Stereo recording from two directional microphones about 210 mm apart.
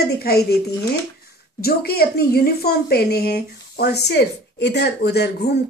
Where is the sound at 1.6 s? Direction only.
45° left (ahead or behind).